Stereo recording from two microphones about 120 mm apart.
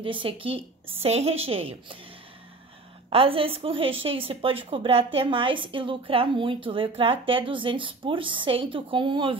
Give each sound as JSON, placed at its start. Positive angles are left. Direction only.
{"t": 0.0, "sound": "a woman's voice", "side_deg": -45}
{"t": 1.0, "sound": "a woman's voice", "side_deg": -60}
{"t": 3.1, "sound": "a woman's voice", "side_deg": -50}